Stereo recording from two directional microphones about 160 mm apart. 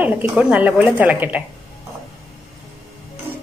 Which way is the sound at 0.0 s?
10° right (ahead or behind).